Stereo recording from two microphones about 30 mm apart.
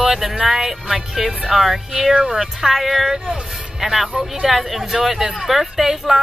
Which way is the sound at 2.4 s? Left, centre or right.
Centre.